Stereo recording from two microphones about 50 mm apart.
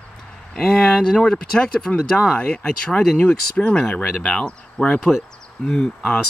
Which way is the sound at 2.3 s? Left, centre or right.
Left.